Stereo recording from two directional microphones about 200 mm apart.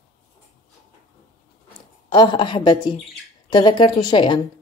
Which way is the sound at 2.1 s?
25° left (ahead or behind).